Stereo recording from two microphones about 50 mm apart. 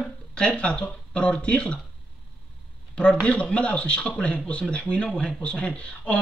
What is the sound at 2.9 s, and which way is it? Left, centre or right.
A man's voice, left.